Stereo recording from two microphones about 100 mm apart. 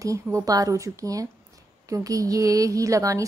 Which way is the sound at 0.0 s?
30° right (ahead or behind).